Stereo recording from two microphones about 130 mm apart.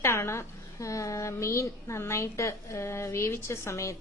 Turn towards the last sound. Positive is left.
turn(degrees=20)  # may be behind; listen again after turning